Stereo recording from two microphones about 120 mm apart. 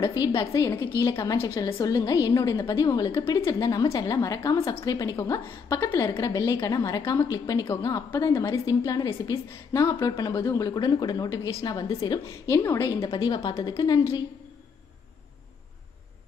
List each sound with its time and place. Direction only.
0.0 s a woman's voice: 35° left (ahead or behind)